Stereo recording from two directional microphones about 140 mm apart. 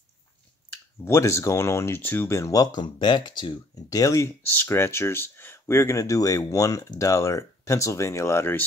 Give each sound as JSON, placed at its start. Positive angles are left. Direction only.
{"t": 1.0, "sound": "speech", "side_deg": 20}